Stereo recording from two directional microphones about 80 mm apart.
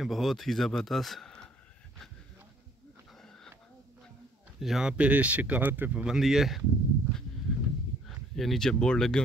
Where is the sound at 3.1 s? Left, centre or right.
Centre.